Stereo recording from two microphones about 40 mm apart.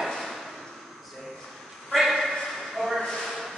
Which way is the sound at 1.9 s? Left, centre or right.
Centre.